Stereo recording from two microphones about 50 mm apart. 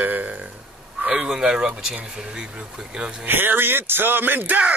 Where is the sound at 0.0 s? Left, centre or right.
Right.